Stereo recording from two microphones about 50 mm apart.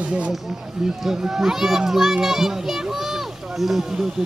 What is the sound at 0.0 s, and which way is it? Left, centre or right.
Speech, right.